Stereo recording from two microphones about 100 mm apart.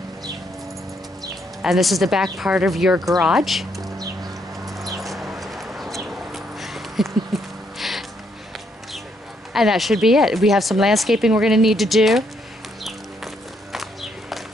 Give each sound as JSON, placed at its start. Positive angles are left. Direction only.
{"t": 1.6, "sound": "speech", "side_deg": 0}
{"t": 4.6, "sound": "a sound", "side_deg": 0}
{"t": 9.5, "sound": "speech", "side_deg": -5}
{"t": 12.8, "sound": "music", "side_deg": 0}